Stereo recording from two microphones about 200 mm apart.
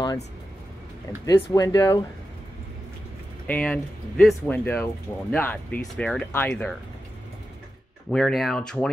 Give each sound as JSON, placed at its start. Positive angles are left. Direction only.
{"t": 1.2, "sound": "speech", "side_deg": 15}
{"t": 3.4, "sound": "speech", "side_deg": 10}
{"t": 8.1, "sound": "speech", "side_deg": 0}